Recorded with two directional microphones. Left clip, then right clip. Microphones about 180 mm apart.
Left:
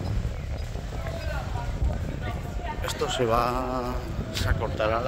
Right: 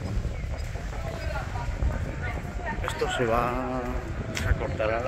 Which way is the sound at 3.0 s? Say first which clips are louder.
Left 1 dB; 15° left (ahead or behind).